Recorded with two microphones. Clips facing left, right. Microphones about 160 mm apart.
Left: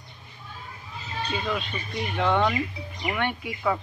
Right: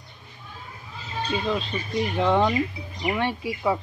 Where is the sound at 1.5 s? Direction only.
30° right (ahead or behind).